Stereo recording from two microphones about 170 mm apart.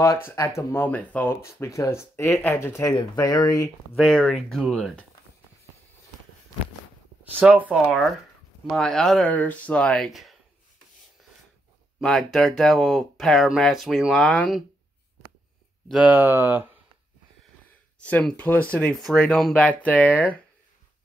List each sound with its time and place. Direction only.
0.6 s speech: 15° left (ahead or behind)
3.9 s speech: centre (ahead or behind)
7.3 s speech: 10° right (ahead or behind)
12.0 s speech: centre (ahead or behind)
15.9 s speech: 5° right (ahead or behind)
17.6 s speech: 10° left (ahead or behind)